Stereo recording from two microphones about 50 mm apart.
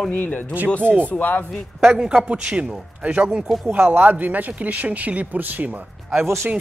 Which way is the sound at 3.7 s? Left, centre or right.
Right.